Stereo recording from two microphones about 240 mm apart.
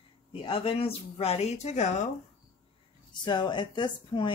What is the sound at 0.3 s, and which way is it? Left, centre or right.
Speech, left.